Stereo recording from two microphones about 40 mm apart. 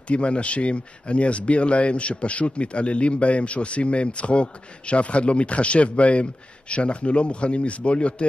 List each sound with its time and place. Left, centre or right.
0.1 s a man's voice: left